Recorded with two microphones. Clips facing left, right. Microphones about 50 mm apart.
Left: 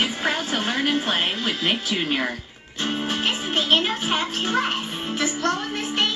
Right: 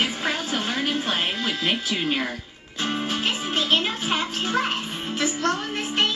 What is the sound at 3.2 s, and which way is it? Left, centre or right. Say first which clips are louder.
Music: left 1 dB; left.